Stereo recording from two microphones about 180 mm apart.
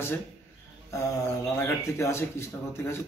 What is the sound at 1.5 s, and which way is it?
A man's voice, 15° left (ahead or behind).